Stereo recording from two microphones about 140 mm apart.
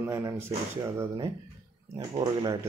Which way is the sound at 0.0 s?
20° right (ahead or behind).